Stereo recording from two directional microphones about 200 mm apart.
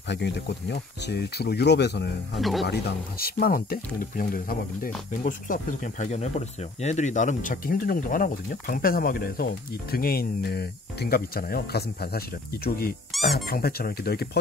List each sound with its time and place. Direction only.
0.1 s speech: 60° left (ahead or behind)
2.3 s speech: centre (ahead or behind)
2.6 s speech: 50° left (ahead or behind)
13.1 s squeak: centre (ahead or behind)
13.5 s speech: 50° left (ahead or behind)